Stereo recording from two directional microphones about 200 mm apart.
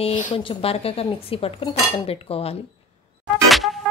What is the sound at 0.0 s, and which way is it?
Speech, 35° left (ahead or behind).